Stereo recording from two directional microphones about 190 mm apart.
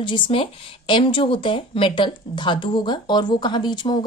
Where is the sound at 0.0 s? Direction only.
25° left (ahead or behind).